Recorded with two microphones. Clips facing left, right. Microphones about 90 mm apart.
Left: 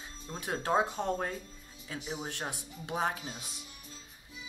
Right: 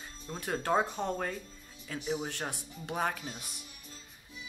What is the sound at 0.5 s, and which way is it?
Speech, 10° left (ahead or behind).